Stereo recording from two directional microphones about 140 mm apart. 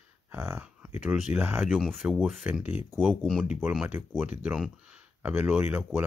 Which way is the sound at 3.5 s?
10° right (ahead or behind).